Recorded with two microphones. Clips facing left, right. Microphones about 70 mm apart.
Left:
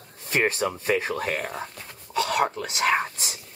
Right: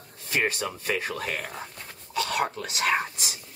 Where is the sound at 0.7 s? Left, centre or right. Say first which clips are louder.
Left 4 dB; left.